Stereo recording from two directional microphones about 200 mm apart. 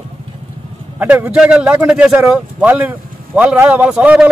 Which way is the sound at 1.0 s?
5° right (ahead or behind).